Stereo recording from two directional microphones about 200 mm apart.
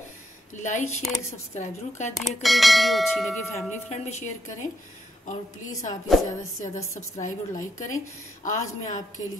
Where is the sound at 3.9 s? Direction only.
35° left (ahead or behind).